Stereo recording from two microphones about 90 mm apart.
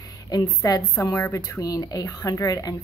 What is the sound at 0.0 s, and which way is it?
A woman's voice, 45° left (ahead or behind).